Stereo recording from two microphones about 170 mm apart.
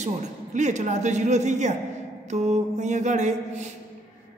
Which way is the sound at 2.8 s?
45° right (ahead or behind).